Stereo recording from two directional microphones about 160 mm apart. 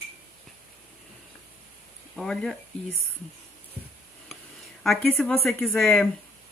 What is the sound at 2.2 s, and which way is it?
Speech, 5° left (ahead or behind).